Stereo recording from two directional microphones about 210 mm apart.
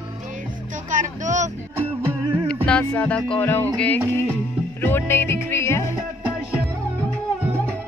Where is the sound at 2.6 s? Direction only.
5° left (ahead or behind).